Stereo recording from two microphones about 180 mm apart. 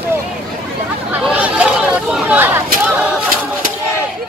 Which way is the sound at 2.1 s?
10° right (ahead or behind).